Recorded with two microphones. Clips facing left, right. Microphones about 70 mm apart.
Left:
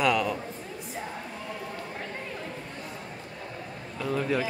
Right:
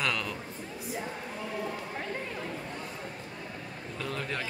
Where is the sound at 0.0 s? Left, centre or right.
Centre.